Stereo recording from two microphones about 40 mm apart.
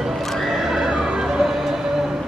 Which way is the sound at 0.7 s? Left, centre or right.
Centre.